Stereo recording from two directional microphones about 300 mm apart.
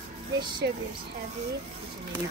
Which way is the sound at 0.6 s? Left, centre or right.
Right.